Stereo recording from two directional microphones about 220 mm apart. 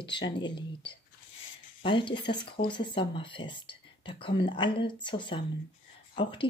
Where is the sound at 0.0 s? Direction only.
20° left (ahead or behind).